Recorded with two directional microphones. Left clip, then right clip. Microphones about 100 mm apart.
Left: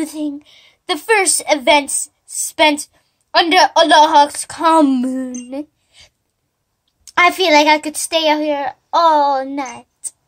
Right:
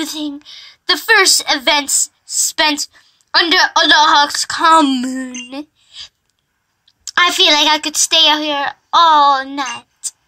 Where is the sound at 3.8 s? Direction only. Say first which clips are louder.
Even; 45° left (ahead or behind).